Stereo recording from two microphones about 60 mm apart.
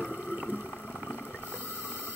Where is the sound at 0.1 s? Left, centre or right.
Centre.